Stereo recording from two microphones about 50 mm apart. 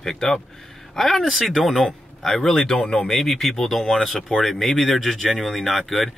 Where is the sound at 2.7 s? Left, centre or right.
Centre.